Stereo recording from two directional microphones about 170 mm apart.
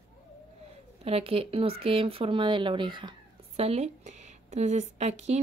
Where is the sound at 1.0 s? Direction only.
35° right (ahead or behind).